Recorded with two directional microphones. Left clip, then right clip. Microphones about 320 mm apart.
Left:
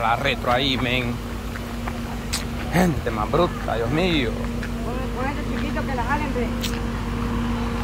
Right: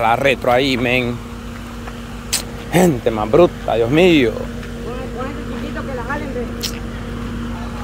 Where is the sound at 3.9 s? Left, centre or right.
Right.